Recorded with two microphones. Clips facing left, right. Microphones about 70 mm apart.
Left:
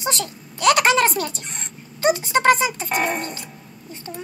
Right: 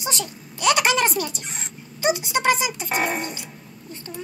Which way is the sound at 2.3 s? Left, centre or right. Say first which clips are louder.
Left 4 dB; left.